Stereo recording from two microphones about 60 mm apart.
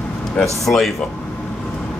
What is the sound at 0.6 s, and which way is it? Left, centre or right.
Speech, centre.